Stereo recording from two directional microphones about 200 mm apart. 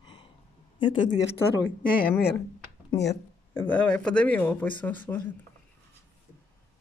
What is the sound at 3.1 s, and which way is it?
Speech, 10° left (ahead or behind).